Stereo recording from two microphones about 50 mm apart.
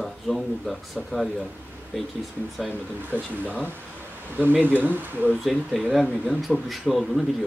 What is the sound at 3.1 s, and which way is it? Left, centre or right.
Speech, right.